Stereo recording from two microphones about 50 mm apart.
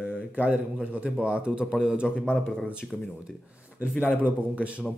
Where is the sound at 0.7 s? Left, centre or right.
Centre.